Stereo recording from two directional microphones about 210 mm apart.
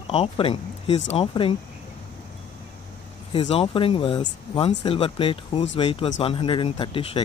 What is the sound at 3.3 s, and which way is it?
Speech, 25° left (ahead or behind).